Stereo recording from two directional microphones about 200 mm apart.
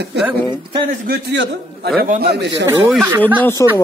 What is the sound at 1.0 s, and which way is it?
A man's voice, 55° right (ahead or behind).